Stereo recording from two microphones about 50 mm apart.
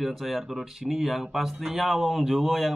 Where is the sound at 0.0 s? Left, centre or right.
Centre.